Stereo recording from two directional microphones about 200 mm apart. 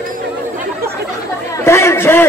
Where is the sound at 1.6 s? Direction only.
15° left (ahead or behind).